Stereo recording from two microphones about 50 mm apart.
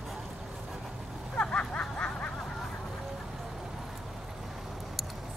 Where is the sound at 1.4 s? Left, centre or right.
Left.